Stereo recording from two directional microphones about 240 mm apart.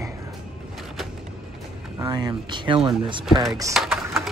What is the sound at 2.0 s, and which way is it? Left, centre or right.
Speech, centre.